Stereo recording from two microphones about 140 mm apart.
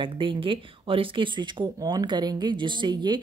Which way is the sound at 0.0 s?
35° right (ahead or behind).